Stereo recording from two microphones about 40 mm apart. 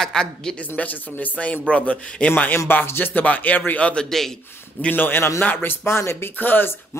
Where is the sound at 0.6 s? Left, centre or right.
Left.